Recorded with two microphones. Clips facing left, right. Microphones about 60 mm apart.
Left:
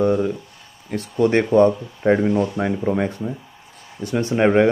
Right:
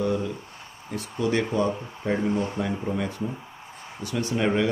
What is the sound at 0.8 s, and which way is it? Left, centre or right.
Speech, left.